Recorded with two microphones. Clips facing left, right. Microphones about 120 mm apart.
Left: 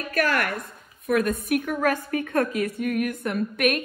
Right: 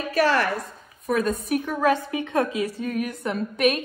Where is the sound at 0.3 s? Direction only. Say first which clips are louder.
Right 3 dB; 25° right (ahead or behind).